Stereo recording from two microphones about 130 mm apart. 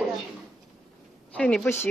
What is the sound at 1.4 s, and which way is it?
Speech, 5° left (ahead or behind).